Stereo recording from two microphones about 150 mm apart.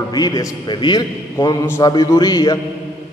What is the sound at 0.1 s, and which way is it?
A man's voice, 25° left (ahead or behind).